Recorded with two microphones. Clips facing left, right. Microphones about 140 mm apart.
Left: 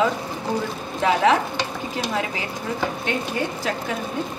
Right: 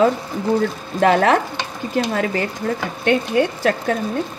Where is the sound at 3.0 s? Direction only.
65° right (ahead or behind).